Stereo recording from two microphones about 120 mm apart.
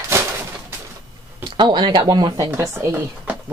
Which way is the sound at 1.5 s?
40° right (ahead or behind).